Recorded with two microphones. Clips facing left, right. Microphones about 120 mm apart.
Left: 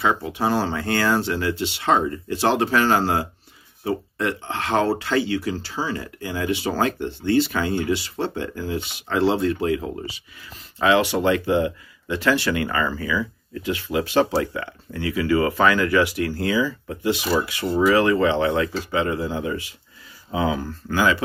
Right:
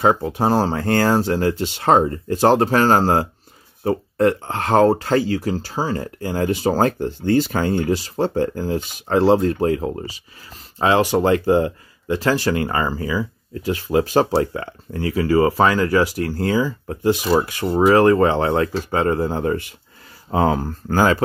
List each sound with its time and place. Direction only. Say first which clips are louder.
0.0 s speech: right 5 dB; 40° right (ahead or behind)